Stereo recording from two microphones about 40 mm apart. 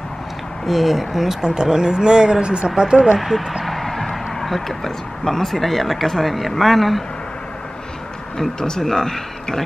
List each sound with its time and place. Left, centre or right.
0.7 s speech: centre
1.4 s speech: centre
3.2 s speech: centre
8.4 s speech: centre